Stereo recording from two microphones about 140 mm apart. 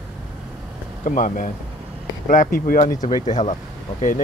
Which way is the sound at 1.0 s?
75° left (ahead or behind).